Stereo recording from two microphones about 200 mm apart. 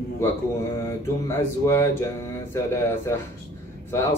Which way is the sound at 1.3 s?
15° left (ahead or behind).